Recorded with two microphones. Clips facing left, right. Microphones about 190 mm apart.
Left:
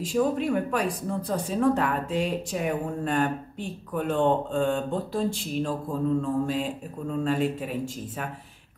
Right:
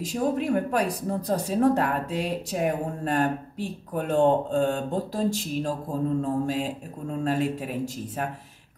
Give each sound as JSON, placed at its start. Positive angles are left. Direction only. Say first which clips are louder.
{"t": 0.0, "sound": "speech", "louder": "left 1 dB", "side_deg": -40}